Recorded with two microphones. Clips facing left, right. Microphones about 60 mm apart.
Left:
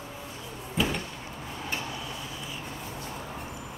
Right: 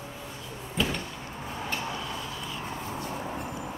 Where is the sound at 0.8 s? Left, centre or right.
Centre.